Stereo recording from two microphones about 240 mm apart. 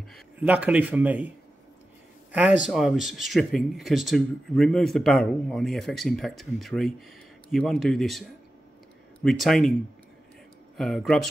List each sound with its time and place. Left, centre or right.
0.1 s speech: centre
2.6 s speech: centre
10.8 s speech: centre